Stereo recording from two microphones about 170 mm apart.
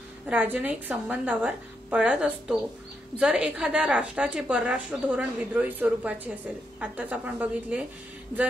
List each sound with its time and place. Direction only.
0.3 s a woman's voice: 10° right (ahead or behind)